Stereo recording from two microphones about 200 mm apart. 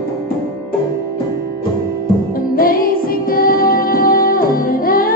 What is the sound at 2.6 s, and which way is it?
Music, 45° left (ahead or behind).